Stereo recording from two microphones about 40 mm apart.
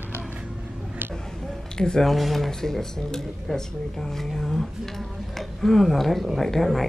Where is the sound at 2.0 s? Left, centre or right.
Centre.